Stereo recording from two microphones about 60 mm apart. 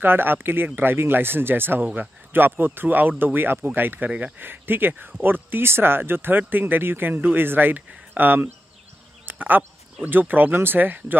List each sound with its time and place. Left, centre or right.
0.0 s speech: right
9.2 s a sound: right
10.0 s speech: right